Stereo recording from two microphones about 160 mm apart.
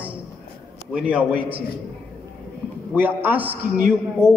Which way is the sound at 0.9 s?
5° right (ahead or behind).